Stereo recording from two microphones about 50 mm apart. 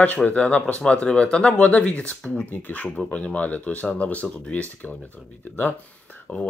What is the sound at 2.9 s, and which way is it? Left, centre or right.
Speech, left.